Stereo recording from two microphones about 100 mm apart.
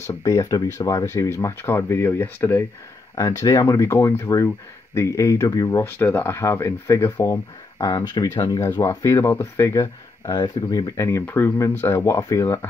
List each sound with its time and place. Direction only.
0.0 s speech: 30° left (ahead or behind)
3.2 s speech: 35° left (ahead or behind)
5.9 s speech: 20° left (ahead or behind)
7.8 s speech: 40° left (ahead or behind)
8.6 s speech: 25° left (ahead or behind)
10.2 s speech: 40° left (ahead or behind)
11.0 s speech: 25° left (ahead or behind)